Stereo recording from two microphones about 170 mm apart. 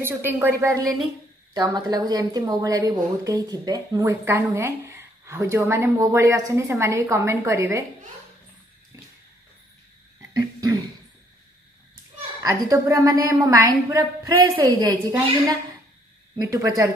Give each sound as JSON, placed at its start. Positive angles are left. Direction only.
{"t": 0.0, "sound": "a woman's voice", "side_deg": -10}
{"t": 12.4, "sound": "a woman's voice", "side_deg": -20}
{"t": 16.3, "sound": "a woman's voice", "side_deg": -20}